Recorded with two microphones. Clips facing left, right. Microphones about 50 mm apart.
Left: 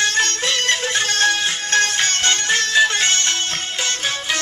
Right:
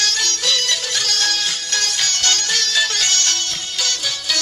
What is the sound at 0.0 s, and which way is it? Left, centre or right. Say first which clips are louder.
Music: left 3 dB; left.